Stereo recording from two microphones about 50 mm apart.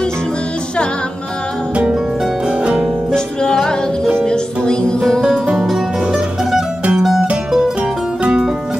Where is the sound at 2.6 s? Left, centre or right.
Centre.